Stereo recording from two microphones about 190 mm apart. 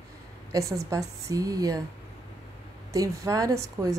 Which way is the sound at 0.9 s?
15° right (ahead or behind).